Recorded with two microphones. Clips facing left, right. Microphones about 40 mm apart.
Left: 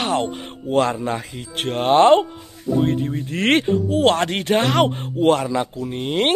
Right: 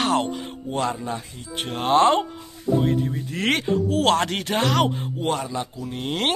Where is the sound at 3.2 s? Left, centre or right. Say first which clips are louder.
Left 7 dB; left.